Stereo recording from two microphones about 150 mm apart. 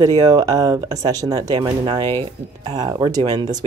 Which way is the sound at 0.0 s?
20° right (ahead or behind).